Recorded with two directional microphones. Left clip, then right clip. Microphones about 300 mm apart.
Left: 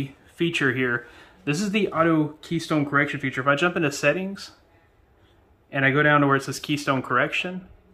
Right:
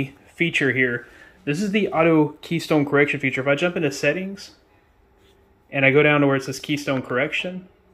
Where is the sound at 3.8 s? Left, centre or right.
Left.